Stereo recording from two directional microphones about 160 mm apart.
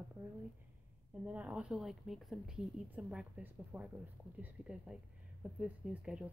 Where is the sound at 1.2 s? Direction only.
10° right (ahead or behind).